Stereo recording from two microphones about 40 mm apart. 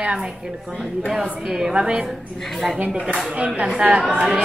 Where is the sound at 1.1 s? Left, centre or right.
Centre.